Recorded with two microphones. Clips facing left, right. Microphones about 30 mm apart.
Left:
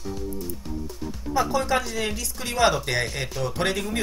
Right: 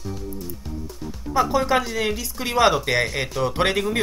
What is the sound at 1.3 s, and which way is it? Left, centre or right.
Speech, centre.